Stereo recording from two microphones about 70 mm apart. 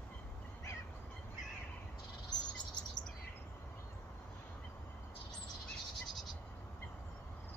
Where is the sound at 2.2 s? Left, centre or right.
Left.